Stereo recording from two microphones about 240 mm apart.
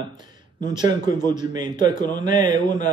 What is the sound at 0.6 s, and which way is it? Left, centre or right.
A man's voice, centre.